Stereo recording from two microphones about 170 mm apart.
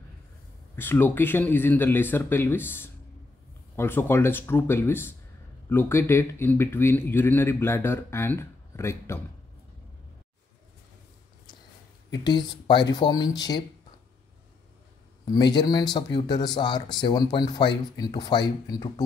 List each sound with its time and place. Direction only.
0.7 s speech: 10° left (ahead or behind)
12.1 s speech: 25° left (ahead or behind)
15.3 s speech: 25° left (ahead or behind)